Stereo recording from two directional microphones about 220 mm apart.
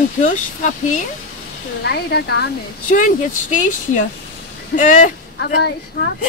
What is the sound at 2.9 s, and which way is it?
Speech, 35° left (ahead or behind).